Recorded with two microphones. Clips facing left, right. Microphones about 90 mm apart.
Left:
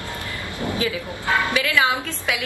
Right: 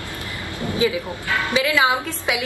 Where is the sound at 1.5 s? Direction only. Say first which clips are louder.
Right 2 dB; 20° right (ahead or behind).